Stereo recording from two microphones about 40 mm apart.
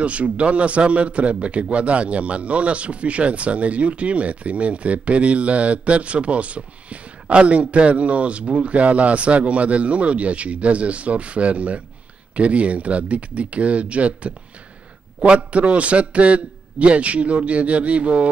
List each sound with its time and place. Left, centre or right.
0.0 s a man's voice: right